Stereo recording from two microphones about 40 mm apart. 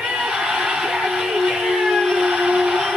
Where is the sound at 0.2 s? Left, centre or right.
Centre.